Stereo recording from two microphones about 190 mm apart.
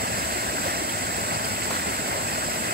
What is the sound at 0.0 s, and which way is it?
Vehicle, 55° right (ahead or behind).